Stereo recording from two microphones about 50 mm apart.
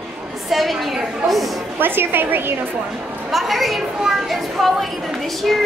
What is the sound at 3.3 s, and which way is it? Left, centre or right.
Speech, centre.